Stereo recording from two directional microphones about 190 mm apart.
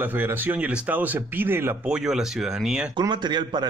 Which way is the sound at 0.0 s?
10° right (ahead or behind).